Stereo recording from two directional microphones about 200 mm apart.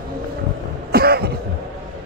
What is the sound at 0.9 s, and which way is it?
Cough, 50° right (ahead or behind).